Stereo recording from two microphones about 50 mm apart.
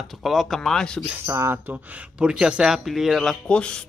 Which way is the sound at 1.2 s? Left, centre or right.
Right.